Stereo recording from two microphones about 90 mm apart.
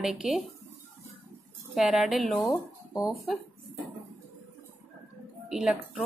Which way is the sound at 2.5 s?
40° left (ahead or behind).